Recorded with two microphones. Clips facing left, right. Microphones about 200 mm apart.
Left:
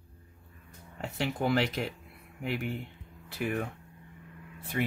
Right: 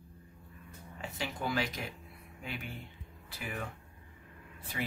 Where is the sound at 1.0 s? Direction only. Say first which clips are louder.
Left 7 dB; 65° left (ahead or behind).